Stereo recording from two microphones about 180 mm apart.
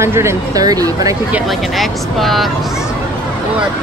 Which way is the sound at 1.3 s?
5° right (ahead or behind).